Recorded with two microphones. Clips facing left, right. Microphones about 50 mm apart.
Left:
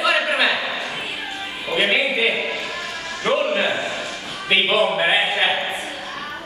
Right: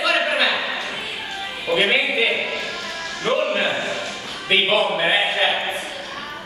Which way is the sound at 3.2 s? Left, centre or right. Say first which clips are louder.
Left 1 dB; centre.